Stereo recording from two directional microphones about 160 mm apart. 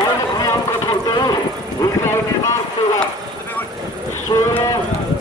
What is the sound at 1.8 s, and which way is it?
Vehicle, 15° left (ahead or behind).